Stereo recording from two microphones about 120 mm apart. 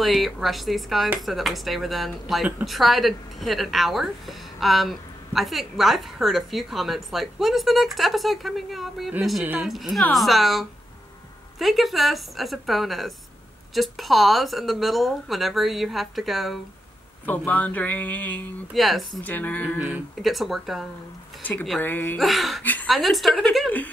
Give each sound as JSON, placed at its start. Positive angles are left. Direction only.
{"t": 0.0, "sound": "speech", "side_deg": 0}
{"t": 17.3, "sound": "speech", "side_deg": 15}
{"t": 18.7, "sound": "speech", "side_deg": 0}
{"t": 19.2, "sound": "speech", "side_deg": 15}
{"t": 20.2, "sound": "speech", "side_deg": 0}
{"t": 21.4, "sound": "speech", "side_deg": 15}
{"t": 22.2, "sound": "speech", "side_deg": 0}
{"t": 22.6, "sound": "speech", "side_deg": 15}
{"t": 22.8, "sound": "speech", "side_deg": 0}